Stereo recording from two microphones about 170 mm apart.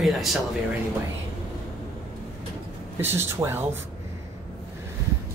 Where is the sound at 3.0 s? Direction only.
15° right (ahead or behind).